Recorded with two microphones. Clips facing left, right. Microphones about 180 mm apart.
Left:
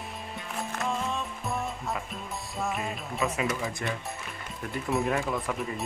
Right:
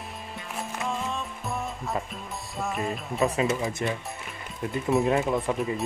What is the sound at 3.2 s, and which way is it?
Speech, 30° right (ahead or behind).